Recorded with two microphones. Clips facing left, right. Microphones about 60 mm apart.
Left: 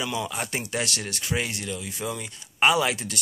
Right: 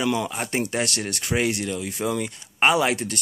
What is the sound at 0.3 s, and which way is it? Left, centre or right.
Speech, right.